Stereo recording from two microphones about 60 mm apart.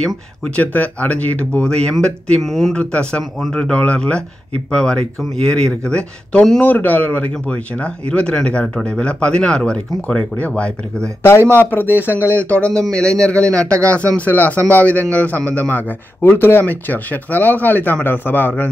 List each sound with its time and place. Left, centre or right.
0.6 s speech: left; by 2.7 s centre
2.7 s speech: centre
3.7 s speech: centre
6.6 s speech: left
11.4 s speech: left
12.4 s speech: left